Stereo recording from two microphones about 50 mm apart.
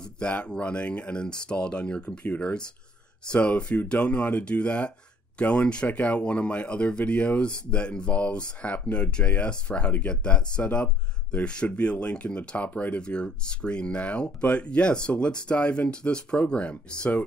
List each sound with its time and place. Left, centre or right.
0.0 s speech: left